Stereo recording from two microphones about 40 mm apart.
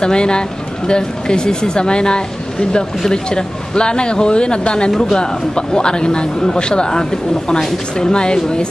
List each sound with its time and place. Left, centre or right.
0.0 s speech: left